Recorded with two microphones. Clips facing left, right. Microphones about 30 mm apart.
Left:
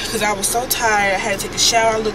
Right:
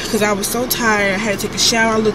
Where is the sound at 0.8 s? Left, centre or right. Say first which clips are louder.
Right 1 dB; centre.